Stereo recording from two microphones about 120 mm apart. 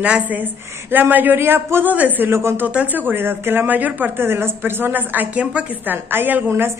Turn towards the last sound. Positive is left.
turn(degrees=-20)  # may be behind; listen again after turning